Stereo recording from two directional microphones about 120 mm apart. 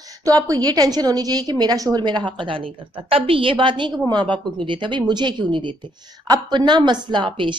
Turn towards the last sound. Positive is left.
turn(degrees=-45)  # may be behind; listen again after turning